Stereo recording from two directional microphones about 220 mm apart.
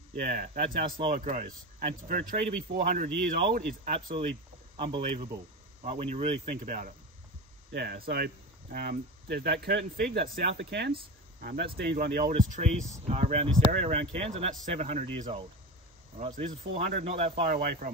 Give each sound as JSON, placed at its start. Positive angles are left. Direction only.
{"t": 0.1, "sound": "speech", "side_deg": -40}
{"t": 0.9, "sound": "speech", "side_deg": -25}
{"t": 1.2, "sound": "speech", "side_deg": -35}
{"t": 4.7, "sound": "speech", "side_deg": -25}
{"t": 12.3, "sound": "speech", "side_deg": -30}
{"t": 17.5, "sound": "speech", "side_deg": -40}